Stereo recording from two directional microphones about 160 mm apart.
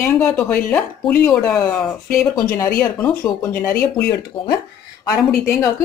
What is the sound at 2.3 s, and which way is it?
Speech, 20° left (ahead or behind).